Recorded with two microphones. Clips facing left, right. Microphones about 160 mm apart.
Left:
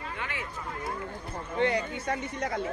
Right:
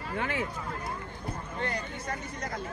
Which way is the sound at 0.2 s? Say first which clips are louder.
Right 8 dB; 40° right (ahead or behind).